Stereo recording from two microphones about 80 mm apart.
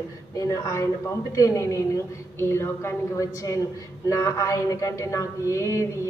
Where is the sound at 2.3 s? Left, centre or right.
Left.